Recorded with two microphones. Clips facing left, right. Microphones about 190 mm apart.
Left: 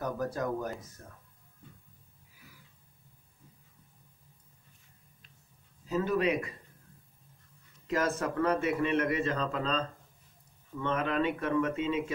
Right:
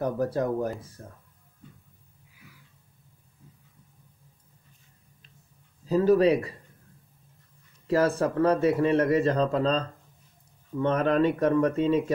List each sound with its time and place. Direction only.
0.0 s speech: 30° right (ahead or behind)
5.9 s speech: 35° right (ahead or behind)
7.8 s speech: 30° right (ahead or behind)